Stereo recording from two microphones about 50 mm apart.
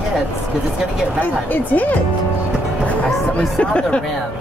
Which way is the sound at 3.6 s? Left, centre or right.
Left.